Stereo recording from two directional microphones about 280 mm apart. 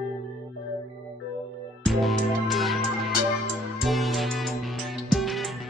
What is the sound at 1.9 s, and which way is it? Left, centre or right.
Music, centre.